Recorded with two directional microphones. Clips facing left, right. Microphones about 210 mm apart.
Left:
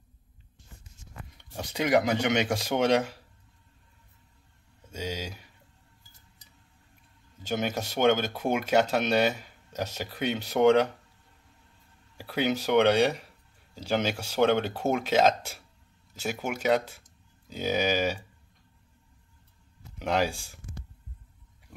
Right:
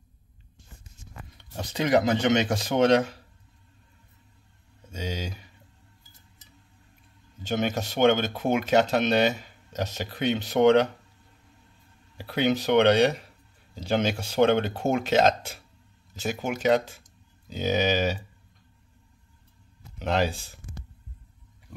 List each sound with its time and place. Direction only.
1.6 s speech: 10° left (ahead or behind)
4.9 s a sound: 10° left (ahead or behind)
7.4 s speech: 10° left (ahead or behind)
12.2 s speech: 10° left (ahead or behind)
20.0 s speech: 10° left (ahead or behind)